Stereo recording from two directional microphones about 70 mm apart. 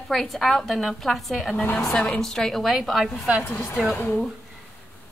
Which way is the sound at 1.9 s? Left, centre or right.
Centre.